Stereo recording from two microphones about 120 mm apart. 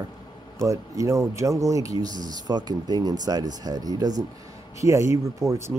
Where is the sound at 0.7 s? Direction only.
25° right (ahead or behind).